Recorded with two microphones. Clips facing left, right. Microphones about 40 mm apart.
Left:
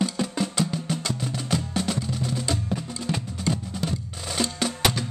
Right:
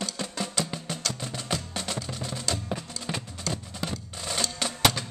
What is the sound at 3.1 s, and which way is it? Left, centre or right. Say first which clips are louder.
Music: left 4 dB; centre.